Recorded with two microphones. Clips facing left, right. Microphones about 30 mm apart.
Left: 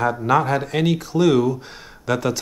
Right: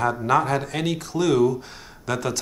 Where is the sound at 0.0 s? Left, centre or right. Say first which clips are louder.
Left 2 dB; centre.